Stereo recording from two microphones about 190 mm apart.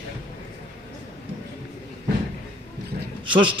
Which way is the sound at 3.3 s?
25° right (ahead or behind).